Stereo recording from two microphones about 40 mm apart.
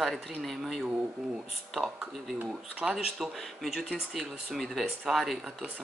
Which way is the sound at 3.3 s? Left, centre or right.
Centre.